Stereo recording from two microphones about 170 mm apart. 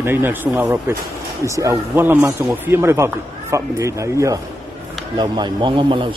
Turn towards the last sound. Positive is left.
turn(degrees=-30)  # may be behind; listen again after turning